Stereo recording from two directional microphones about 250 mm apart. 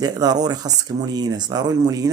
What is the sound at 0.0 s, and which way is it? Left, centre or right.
Speech, centre.